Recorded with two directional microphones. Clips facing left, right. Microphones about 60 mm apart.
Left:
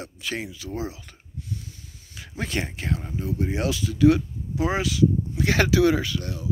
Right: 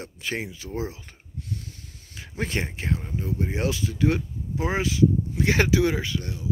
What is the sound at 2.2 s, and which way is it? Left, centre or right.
Speech, right.